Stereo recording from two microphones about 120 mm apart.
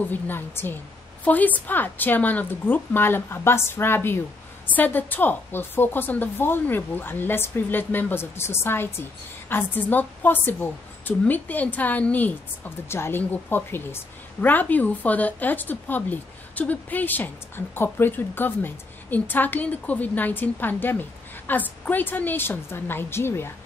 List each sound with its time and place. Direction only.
0.1 s a woman's voice: 15° left (ahead or behind)